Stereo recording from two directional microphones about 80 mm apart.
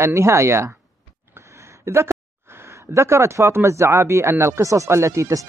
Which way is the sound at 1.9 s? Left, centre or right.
Right.